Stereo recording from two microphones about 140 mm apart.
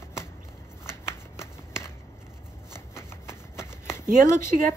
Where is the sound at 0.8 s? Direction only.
20° left (ahead or behind).